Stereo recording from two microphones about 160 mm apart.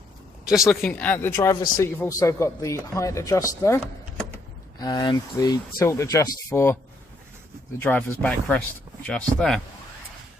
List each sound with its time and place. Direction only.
0.5 s speech: centre (ahead or behind)
7.8 s speech: 10° left (ahead or behind)